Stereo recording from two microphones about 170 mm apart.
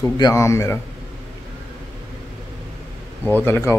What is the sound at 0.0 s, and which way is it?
Speech, 15° left (ahead or behind).